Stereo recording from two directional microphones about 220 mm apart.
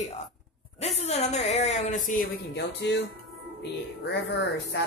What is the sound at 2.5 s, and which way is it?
Speech, 50° left (ahead or behind).